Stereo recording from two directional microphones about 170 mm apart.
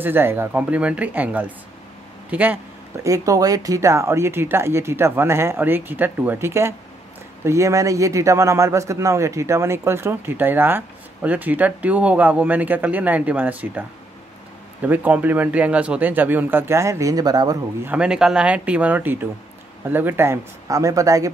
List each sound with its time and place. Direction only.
0.0 s speech: 15° right (ahead or behind)
17.8 s speech: 5° right (ahead or behind)